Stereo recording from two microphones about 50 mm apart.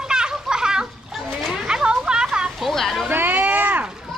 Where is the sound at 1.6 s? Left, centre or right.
Centre.